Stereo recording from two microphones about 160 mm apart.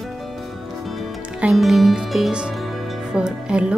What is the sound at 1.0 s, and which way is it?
Music, centre (ahead or behind).